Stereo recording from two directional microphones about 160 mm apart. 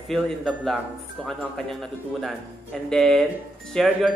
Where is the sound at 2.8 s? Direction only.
5° left (ahead or behind).